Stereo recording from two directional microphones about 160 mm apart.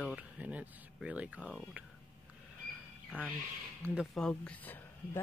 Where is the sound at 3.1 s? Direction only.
10° right (ahead or behind).